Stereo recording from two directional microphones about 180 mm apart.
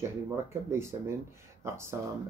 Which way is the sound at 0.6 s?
15° right (ahead or behind).